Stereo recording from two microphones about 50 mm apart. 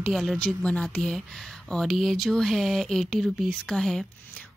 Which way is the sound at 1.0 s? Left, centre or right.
Centre.